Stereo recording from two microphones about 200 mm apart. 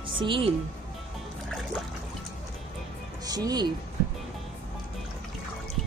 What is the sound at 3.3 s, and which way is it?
Speech, 20° right (ahead or behind).